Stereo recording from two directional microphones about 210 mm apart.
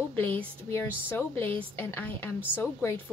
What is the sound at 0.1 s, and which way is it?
A woman's voice, 10° left (ahead or behind).